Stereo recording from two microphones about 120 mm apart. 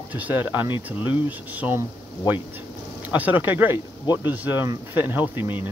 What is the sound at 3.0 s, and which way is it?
Speech, 15° right (ahead or behind).